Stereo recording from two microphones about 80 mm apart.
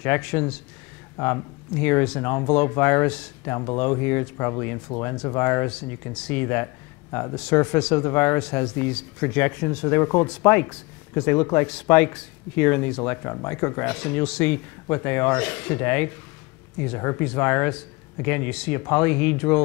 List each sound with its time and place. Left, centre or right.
0.0 s speech: left
8.4 s speech: centre